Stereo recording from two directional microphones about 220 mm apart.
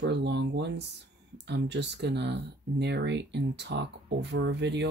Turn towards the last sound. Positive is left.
turn(degrees=-50)  # may be behind; listen again after turning